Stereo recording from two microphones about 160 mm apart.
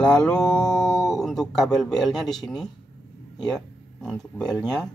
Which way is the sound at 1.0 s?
Centre (ahead or behind).